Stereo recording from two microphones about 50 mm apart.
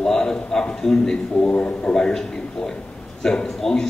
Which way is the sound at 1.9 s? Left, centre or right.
Centre.